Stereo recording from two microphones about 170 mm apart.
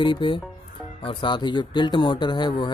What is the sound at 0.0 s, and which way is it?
Speech, 30° left (ahead or behind).